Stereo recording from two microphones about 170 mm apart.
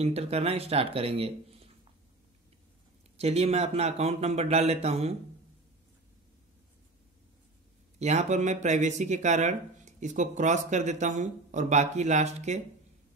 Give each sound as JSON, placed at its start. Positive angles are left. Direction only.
{"t": 0.0, "sound": "speech", "side_deg": -40}
{"t": 3.2, "sound": "speech", "side_deg": -40}
{"t": 8.0, "sound": "speech", "side_deg": -40}